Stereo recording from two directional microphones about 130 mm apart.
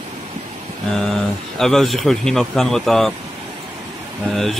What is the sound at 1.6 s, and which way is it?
Speech, 5° left (ahead or behind).